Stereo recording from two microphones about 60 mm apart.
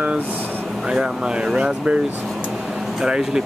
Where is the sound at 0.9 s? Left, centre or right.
Centre.